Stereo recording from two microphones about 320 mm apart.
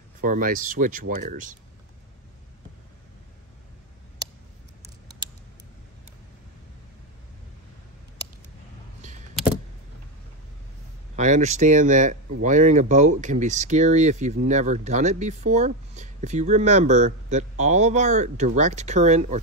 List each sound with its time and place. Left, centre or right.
0.2 s speech: right
11.1 s speech: right